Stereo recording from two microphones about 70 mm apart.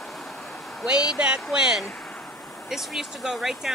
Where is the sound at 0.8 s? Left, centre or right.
Centre.